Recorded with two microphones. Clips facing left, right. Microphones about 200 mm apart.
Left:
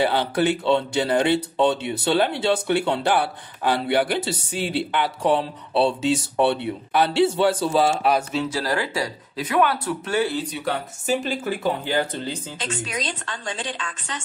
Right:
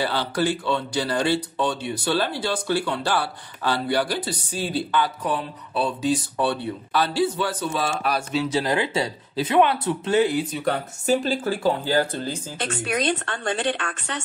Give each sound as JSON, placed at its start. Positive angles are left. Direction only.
{"t": 0.0, "sound": "speech", "side_deg": 20}
{"t": 8.5, "sound": "speech", "side_deg": -20}
{"t": 10.4, "sound": "speech", "side_deg": 0}
{"t": 11.8, "sound": "speech", "side_deg": 20}
{"t": 12.5, "sound": "speech", "side_deg": -60}